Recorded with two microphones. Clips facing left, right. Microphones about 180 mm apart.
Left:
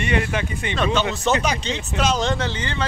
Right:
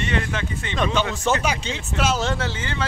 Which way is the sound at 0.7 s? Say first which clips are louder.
Left 1 dB; 15° right (ahead or behind).